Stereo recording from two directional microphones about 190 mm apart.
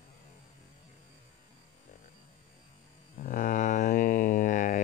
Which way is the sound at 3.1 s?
45° left (ahead or behind).